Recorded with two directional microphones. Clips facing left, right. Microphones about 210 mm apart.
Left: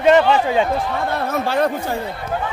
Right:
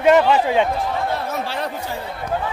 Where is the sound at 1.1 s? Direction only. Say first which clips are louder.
Left 4 dB; 50° left (ahead or behind).